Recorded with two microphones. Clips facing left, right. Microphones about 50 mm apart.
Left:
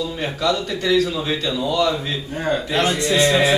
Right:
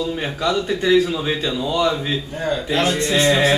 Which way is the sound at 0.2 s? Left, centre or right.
Centre.